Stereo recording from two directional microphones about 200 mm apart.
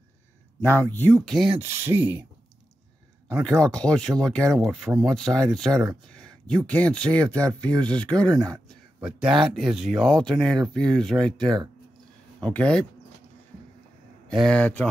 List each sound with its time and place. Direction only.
0.6 s speech: 10° left (ahead or behind)
1.9 s speech: 10° right (ahead or behind)
3.3 s speech: 5° left (ahead or behind)
14.4 s speech: 5° left (ahead or behind)